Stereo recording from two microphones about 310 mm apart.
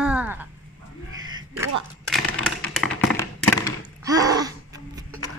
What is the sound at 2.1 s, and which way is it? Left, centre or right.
Tap, centre.